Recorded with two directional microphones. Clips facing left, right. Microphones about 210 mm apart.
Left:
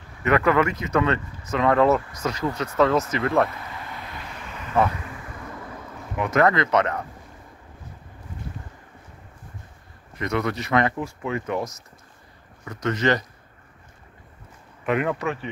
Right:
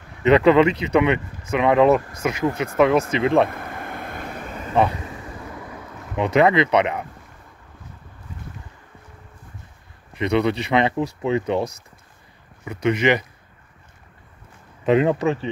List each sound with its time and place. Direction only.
0.2 s speech: 20° right (ahead or behind)
3.4 s a sound: 50° right (ahead or behind)
6.1 s speech: 20° right (ahead or behind)
10.1 s speech: 20° right (ahead or behind)
12.6 s speech: 10° right (ahead or behind)
14.9 s speech: 25° right (ahead or behind)